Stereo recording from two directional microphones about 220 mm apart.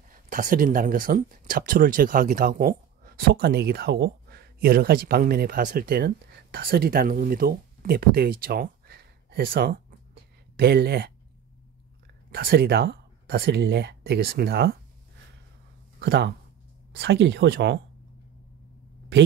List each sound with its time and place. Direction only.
0.1 s speech: 40° right (ahead or behind)
12.3 s speech: 45° right (ahead or behind)
16.0 s speech: 50° right (ahead or behind)